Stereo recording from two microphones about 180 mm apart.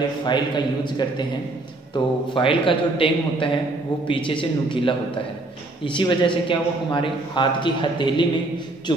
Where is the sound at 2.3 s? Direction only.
30° left (ahead or behind).